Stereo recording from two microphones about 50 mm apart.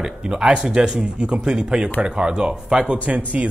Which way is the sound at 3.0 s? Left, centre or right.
Right.